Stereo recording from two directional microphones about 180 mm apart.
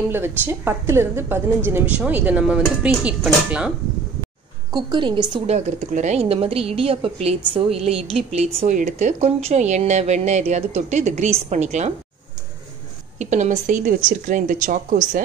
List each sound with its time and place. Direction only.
0.1 s a woman's voice: 15° right (ahead or behind)
4.7 s a woman's voice: 25° right (ahead or behind)
5.5 s speech: 40° right (ahead or behind)
13.2 s speech: 40° right (ahead or behind)